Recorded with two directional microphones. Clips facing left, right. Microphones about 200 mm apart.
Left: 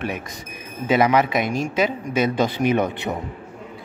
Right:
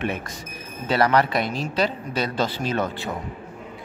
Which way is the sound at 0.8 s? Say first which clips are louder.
Left 2 dB; 15° left (ahead or behind).